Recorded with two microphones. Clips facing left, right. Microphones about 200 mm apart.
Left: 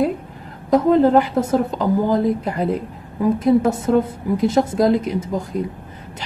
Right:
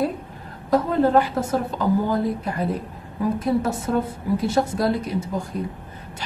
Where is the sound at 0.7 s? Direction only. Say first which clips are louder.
Left 5 dB; 20° left (ahead or behind).